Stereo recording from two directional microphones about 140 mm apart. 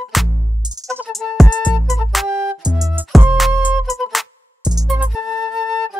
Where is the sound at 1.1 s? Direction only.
Centre (ahead or behind).